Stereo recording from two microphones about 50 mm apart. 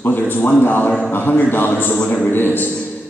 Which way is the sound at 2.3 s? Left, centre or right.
Left.